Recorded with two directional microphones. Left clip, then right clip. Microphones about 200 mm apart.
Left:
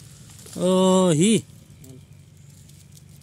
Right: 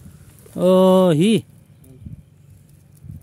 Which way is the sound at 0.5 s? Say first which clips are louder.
Right 6 dB; 30° right (ahead or behind).